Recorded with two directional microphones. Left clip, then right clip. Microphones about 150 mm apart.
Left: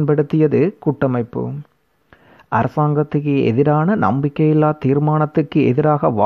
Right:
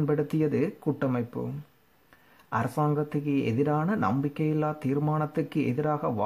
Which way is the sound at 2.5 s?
45° left (ahead or behind).